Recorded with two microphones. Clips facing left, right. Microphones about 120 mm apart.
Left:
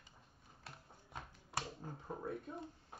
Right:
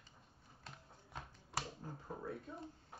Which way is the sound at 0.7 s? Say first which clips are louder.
Even; centre (ahead or behind).